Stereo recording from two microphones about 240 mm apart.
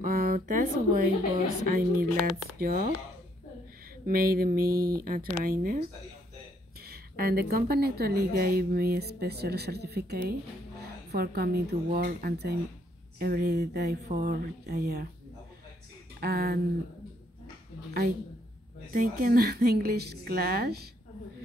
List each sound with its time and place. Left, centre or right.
0.0 s a sound: right
1.7 s a woman's voice: right
4.0 s a woman's voice: right
6.8 s a woman's voice: right
16.2 s a woman's voice: right
18.9 s a woman's voice: right